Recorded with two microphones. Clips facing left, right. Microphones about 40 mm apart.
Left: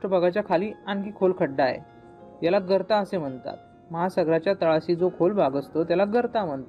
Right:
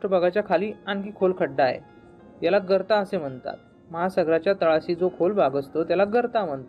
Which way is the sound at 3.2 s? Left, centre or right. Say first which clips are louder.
Right 1 dB; centre.